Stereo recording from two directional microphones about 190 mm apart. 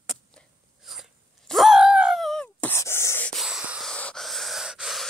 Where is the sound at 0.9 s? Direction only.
Centre (ahead or behind).